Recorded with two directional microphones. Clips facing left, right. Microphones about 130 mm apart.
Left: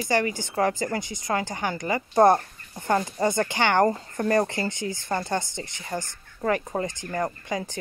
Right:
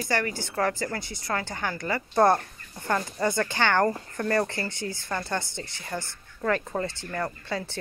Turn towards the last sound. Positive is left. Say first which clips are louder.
# left 2 dB
turn(degrees=15)  # may be behind; listen again after turning